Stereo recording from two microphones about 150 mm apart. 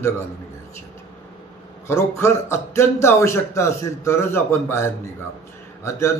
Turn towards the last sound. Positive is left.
turn(degrees=20)  # may be behind; listen again after turning